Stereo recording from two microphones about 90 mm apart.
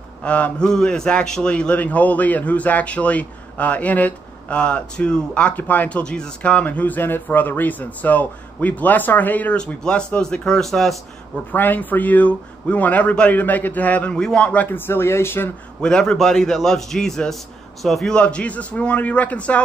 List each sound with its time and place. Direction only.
0.2 s a man's voice: 15° left (ahead or behind)
11.5 s a man's voice: 20° left (ahead or behind)
15.8 s a man's voice: 10° left (ahead or behind)